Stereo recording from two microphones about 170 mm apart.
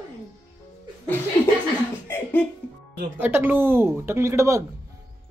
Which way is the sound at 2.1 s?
10° left (ahead or behind).